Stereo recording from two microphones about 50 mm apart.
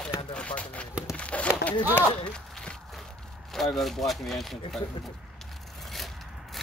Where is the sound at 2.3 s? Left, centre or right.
Centre.